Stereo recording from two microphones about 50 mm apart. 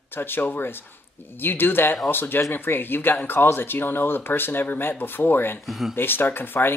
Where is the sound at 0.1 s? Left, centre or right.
Left.